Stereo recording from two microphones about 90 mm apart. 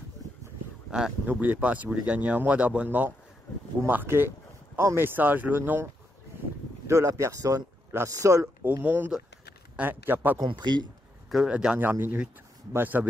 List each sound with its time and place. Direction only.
0.8 s speech: 5° right (ahead or behind)
1.2 s speech: 20° right (ahead or behind)
6.9 s speech: 35° right (ahead or behind)
8.8 s speech: 25° right (ahead or behind)
10.4 s a man's voice: 55° right (ahead or behind)
11.2 s speech: 5° right (ahead or behind)